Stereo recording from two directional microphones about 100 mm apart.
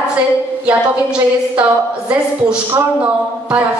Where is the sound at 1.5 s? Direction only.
10° right (ahead or behind).